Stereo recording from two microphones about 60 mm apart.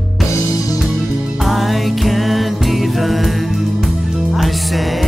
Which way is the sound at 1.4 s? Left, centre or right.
Centre.